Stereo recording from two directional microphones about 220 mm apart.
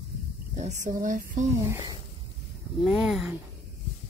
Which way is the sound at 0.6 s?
35° right (ahead or behind).